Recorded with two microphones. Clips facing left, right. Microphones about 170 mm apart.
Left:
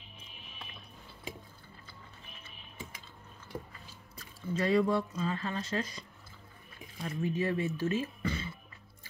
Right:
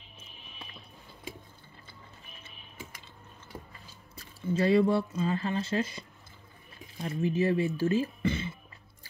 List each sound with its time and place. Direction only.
4.2 s speech: 30° right (ahead or behind)